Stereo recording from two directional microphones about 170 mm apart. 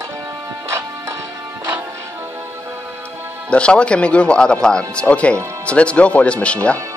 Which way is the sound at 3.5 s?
5° left (ahead or behind).